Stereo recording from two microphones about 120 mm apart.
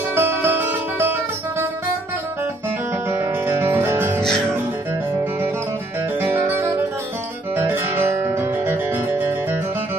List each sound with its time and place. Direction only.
0.1 s music: 20° right (ahead or behind)
3.1 s music: 20° right (ahead or behind)
6.2 s music: 20° right (ahead or behind)
7.5 s guitar: 15° right (ahead or behind)